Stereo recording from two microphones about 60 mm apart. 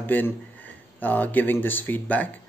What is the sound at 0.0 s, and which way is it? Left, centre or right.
Speech, left.